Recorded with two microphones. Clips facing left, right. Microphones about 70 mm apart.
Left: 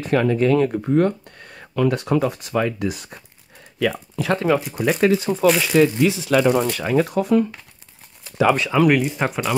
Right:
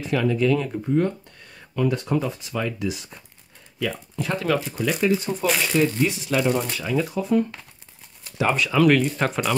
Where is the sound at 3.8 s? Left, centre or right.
Left.